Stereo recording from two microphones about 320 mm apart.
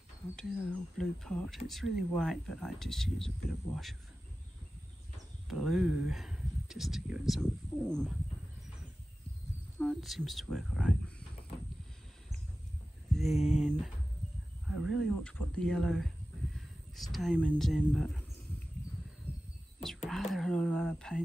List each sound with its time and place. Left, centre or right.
0.4 s speech: centre
5.5 s speech: centre
9.8 s speech: centre
13.1 s a sound: centre
13.4 s a sound: left
14.8 s speech: centre
20.1 s speech: centre